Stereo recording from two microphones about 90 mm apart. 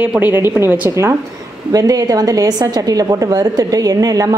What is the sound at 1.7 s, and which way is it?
A woman's voice, 45° right (ahead or behind).